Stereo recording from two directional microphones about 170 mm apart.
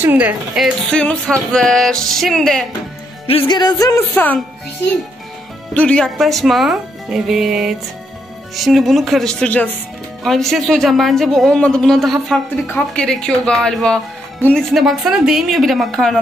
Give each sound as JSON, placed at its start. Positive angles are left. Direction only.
{"t": 0.0, "sound": "speech", "side_deg": -10}
{"t": 0.8, "sound": "speech", "side_deg": 5}
{"t": 3.3, "sound": "music", "side_deg": 30}
{"t": 4.1, "sound": "speech", "side_deg": 10}
{"t": 5.8, "sound": "speech", "side_deg": 5}